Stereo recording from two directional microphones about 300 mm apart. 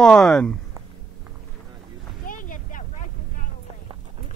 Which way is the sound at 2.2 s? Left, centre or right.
Left.